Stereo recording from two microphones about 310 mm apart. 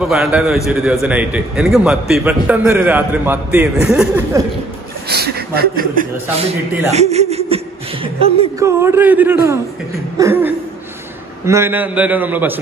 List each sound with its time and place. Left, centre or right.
0.0 s a man's voice: centre
5.1 s a woman's voice: right; by 12.5 s centre